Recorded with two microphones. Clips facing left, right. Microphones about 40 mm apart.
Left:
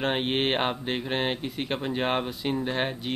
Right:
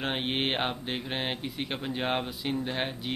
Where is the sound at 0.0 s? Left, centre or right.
Centre.